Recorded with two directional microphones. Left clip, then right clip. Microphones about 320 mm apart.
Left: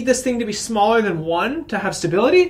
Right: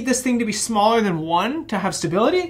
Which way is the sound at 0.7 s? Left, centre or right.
Right.